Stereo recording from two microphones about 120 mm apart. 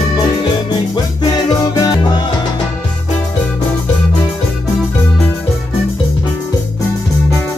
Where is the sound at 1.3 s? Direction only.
35° left (ahead or behind).